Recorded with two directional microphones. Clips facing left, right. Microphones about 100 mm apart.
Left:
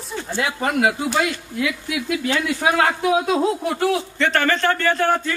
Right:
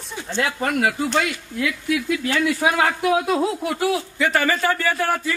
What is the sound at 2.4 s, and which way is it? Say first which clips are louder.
Speech: even; centre (ahead or behind).